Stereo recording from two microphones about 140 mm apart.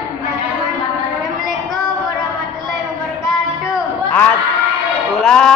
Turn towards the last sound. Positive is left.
turn(degrees=5)  # may be behind; listen again after turning